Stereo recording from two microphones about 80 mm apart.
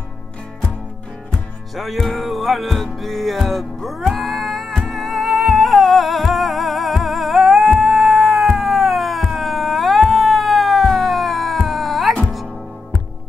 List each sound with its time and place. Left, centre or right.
1.8 s music: centre